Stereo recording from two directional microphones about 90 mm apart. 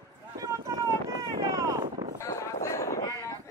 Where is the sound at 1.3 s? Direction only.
45° right (ahead or behind).